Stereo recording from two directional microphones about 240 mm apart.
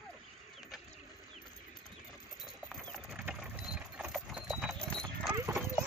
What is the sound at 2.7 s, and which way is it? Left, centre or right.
Clip-clop, centre.